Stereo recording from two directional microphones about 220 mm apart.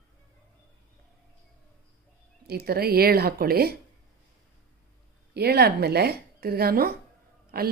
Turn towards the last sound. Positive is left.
turn(degrees=-45)  # may be behind; listen again after turning